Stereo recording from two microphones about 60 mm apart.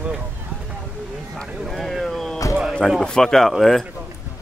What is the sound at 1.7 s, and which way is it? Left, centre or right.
Boat, centre.